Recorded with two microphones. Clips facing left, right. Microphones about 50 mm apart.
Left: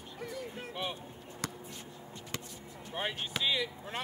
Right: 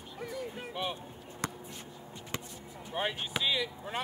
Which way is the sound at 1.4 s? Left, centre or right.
Right.